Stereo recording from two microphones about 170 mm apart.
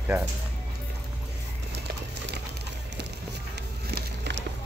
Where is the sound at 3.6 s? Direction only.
75° right (ahead or behind).